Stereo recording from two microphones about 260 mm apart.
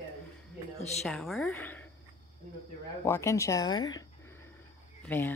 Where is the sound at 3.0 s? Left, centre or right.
Centre.